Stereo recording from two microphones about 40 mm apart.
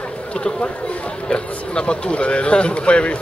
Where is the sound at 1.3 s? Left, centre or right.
Left.